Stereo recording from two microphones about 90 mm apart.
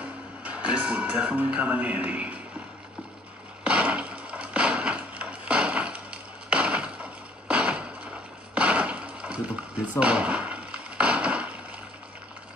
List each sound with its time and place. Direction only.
0.0 s speech: 15° right (ahead or behind)
3.6 s wood: 15° right (ahead or behind)